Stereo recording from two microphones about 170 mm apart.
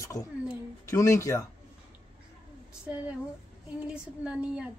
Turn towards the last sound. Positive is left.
turn(degrees=-5)  # may be behind; listen again after turning